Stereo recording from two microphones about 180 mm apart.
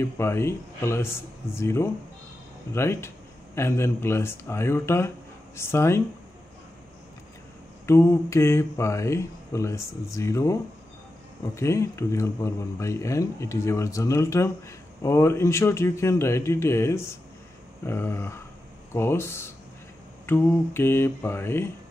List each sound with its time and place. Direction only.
0.0 s speech: 15° left (ahead or behind)
7.8 s speech: 15° left (ahead or behind)